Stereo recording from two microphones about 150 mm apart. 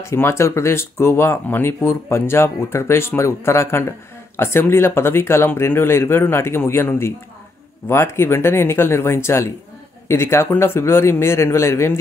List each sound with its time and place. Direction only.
0.0 s speech: 15° left (ahead or behind)